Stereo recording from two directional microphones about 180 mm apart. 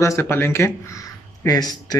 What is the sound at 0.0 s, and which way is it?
Speech, 15° left (ahead or behind).